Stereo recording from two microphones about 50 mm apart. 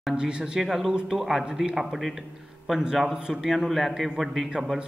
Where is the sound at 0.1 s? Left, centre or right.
Centre.